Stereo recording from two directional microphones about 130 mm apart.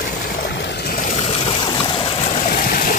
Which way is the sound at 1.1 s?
50° left (ahead or behind).